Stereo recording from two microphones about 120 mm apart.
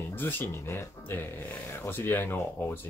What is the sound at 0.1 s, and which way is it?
Speech, 15° left (ahead or behind).